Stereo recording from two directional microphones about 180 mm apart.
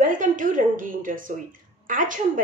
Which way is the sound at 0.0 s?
45° right (ahead or behind).